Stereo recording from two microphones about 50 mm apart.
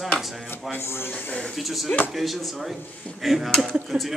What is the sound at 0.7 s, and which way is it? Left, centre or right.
Speech, left.